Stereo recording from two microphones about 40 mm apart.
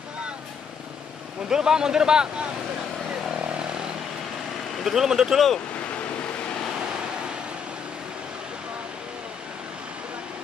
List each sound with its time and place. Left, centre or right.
1.5 s speech: centre
4.8 s speech: centre